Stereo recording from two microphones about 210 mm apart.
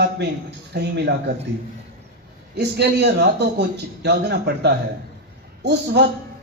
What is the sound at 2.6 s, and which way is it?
A man's voice, 50° right (ahead or behind).